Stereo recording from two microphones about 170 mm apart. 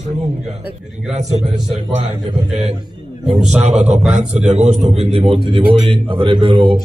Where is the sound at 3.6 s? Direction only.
40° right (ahead or behind).